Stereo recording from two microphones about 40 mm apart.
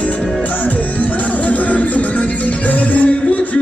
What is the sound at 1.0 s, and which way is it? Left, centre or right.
Music, left.